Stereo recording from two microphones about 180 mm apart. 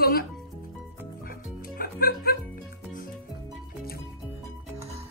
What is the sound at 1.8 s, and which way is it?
Music, 55° left (ahead or behind).